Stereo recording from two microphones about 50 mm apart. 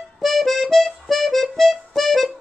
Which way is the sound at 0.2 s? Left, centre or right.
Centre.